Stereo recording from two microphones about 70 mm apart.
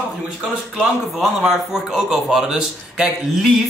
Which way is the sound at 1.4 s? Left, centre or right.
Centre.